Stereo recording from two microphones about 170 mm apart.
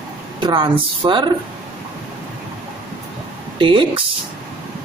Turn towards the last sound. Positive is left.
turn(degrees=-30)  # may be behind; listen again after turning